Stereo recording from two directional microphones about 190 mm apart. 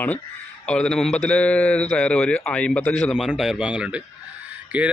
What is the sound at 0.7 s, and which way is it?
A man's voice, 5° left (ahead or behind).